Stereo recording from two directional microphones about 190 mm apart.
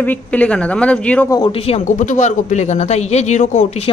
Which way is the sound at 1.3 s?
25° left (ahead or behind).